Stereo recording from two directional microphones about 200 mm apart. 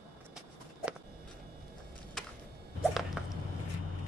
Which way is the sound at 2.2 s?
Centre (ahead or behind).